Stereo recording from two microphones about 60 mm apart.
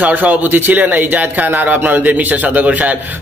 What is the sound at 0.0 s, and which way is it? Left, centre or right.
A man's voice, right.